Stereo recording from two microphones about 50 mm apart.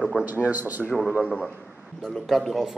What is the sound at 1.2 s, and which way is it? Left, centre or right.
Speech, left.